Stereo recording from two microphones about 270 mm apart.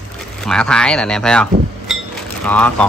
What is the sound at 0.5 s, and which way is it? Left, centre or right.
Speech, centre.